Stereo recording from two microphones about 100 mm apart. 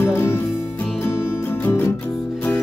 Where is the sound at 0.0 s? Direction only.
25° left (ahead or behind).